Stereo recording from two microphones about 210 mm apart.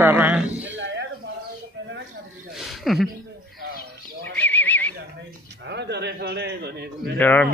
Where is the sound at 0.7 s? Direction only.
60° right (ahead or behind).